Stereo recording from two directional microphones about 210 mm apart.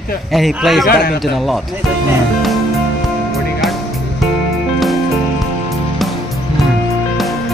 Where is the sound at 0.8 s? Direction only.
45° left (ahead or behind).